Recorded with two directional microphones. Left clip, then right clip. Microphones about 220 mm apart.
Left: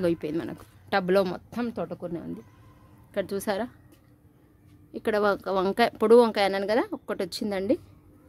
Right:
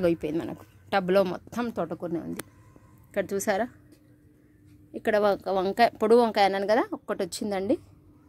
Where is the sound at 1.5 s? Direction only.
20° right (ahead or behind).